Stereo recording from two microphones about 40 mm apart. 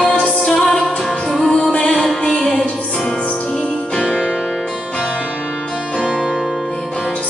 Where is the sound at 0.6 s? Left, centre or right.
Centre.